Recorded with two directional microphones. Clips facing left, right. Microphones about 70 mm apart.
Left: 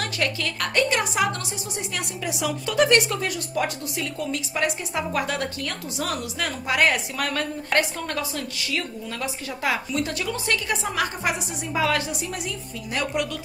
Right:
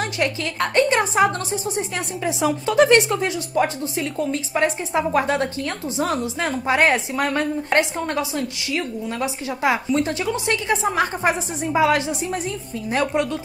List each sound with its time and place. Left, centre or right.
0.0 s a woman's voice: right